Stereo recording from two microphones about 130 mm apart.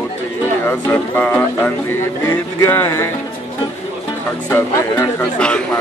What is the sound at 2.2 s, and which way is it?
Music, 20° left (ahead or behind).